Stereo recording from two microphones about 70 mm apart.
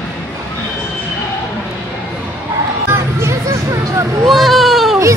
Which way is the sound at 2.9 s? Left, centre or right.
Right.